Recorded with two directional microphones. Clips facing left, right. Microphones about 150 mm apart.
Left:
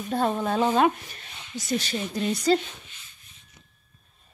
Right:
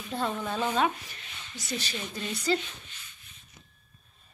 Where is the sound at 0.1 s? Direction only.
50° left (ahead or behind).